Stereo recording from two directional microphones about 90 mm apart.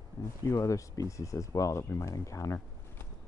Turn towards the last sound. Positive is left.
turn(degrees=35)  # may be behind; listen again after turning